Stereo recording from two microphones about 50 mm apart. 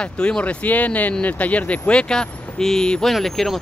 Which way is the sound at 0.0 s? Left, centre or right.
Left.